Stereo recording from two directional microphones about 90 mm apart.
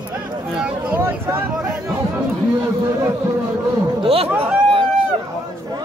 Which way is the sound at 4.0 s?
90° right.